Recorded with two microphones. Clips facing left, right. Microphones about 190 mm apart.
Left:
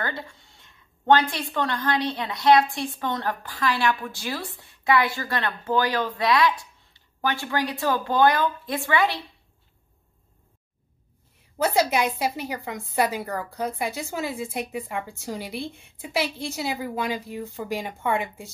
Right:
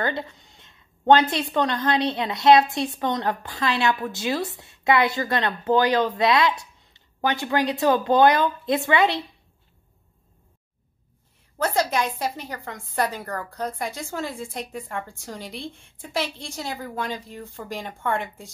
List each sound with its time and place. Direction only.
0.0 s a woman's voice: 20° right (ahead or behind)
11.5 s a woman's voice: 10° left (ahead or behind)